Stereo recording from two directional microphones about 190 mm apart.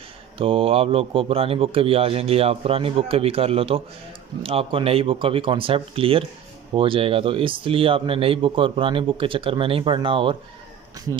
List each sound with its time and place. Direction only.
0.4 s a man's voice: 30° right (ahead or behind)